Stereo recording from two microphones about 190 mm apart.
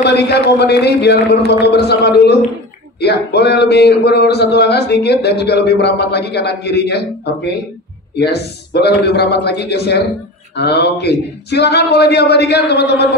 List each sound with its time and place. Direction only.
0.0 s speech: 60° left (ahead or behind)
8.2 s speech: 60° left (ahead or behind)